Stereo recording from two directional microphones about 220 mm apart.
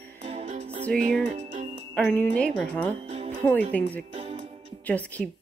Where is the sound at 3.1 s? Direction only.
35° right (ahead or behind).